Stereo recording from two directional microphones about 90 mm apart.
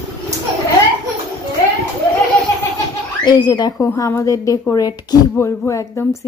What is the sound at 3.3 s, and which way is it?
Speech, 50° left (ahead or behind).